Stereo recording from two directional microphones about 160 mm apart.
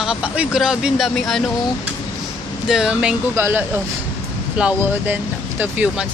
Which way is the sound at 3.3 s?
15° right (ahead or behind).